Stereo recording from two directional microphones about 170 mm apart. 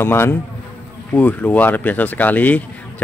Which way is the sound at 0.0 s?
15° left (ahead or behind).